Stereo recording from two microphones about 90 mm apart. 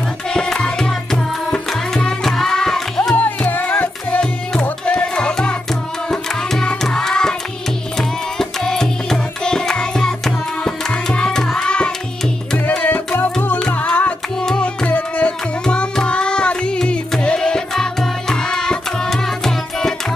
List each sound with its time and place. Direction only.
0.3 s music: 10° left (ahead or behind)
3.3 s music: 20° left (ahead or behind); by 19.9 s 5° left (ahead or behind)